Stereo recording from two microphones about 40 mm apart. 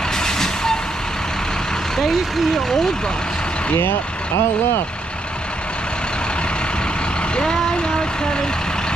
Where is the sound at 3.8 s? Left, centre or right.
Left.